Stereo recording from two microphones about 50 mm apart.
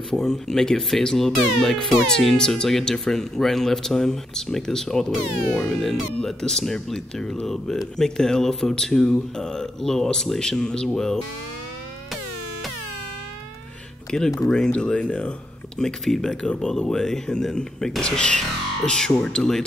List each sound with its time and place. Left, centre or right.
0.1 s speech: centre
14.1 s speech: centre
15.8 s speech: centre